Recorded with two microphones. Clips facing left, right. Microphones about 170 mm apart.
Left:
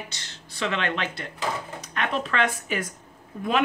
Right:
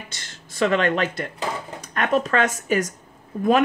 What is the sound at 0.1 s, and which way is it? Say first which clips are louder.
Speech: right 2 dB; 50° right (ahead or behind).